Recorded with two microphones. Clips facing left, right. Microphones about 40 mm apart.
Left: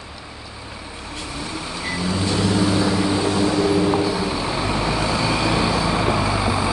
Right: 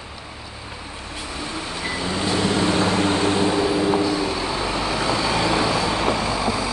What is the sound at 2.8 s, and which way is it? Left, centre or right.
Vehicle, right.